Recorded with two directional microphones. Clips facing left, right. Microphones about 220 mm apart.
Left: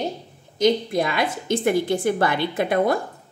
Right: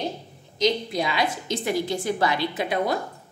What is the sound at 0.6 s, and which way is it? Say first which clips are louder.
A woman's voice: left 4 dB; 50° left (ahead or behind).